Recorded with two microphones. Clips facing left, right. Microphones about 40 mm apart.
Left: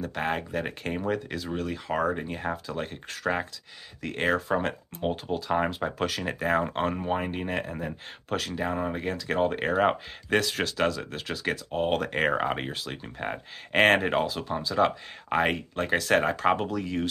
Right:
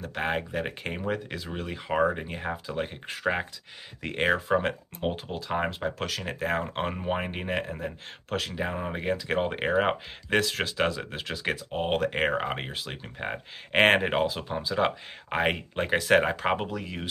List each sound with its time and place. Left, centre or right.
0.0 s speech: centre
4.4 s speech: centre
7.6 s speech: centre